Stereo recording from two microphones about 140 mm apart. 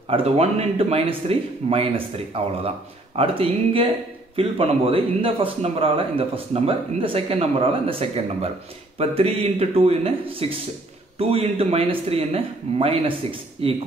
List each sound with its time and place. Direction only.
0.1 s speech: 45° right (ahead or behind)